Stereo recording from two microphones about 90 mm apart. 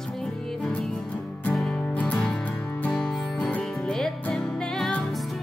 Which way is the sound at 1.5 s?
5° left (ahead or behind).